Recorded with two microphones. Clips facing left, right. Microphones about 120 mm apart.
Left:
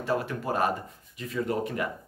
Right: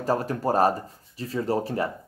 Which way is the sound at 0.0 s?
40° right (ahead or behind).